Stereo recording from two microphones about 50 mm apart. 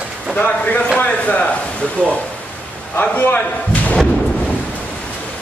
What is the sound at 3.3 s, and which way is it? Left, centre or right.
Speech, left.